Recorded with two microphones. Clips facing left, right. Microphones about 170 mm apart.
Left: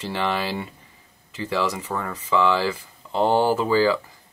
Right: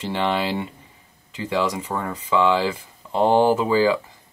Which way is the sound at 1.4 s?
10° right (ahead or behind).